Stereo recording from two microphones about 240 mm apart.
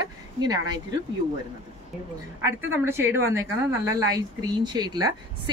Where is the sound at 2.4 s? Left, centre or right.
Centre.